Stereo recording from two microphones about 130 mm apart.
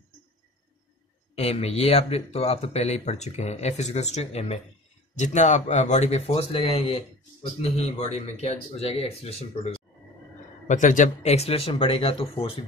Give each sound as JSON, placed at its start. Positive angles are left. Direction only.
{"t": 1.3, "sound": "speech", "side_deg": 50}
{"t": 5.1, "sound": "speech", "side_deg": 65}
{"t": 8.4, "sound": "speech", "side_deg": 55}
{"t": 10.7, "sound": "speech", "side_deg": 75}